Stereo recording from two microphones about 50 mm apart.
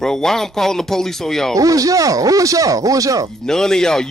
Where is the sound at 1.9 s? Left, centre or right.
Right.